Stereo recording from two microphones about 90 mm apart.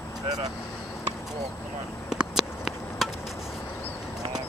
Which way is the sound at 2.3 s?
Centre (ahead or behind).